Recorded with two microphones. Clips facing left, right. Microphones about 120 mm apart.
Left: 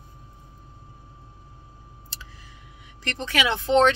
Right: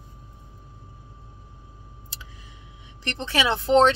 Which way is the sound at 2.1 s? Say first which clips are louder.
Even; 15° right (ahead or behind).